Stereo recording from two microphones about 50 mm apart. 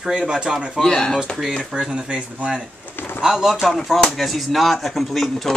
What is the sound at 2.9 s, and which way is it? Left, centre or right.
Pigeon, left.